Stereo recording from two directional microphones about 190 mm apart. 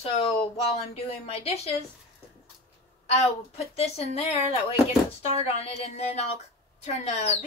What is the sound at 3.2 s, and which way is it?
A woman's voice, 30° left (ahead or behind).